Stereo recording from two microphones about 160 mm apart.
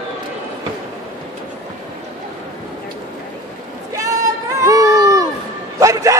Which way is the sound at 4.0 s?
20° right (ahead or behind).